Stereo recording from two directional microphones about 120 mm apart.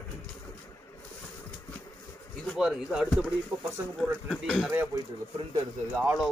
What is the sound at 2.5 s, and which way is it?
Speech, 5° right (ahead or behind).